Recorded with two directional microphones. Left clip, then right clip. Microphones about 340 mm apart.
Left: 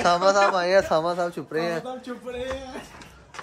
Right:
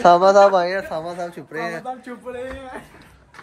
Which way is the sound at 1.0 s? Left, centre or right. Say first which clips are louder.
Left 3 dB; centre.